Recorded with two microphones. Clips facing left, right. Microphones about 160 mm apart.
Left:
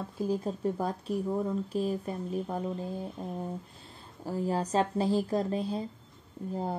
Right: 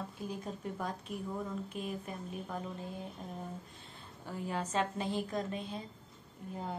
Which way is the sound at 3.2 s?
30° left (ahead or behind).